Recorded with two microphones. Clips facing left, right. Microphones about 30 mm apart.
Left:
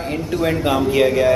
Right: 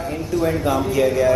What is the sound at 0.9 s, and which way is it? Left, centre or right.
Speech, left.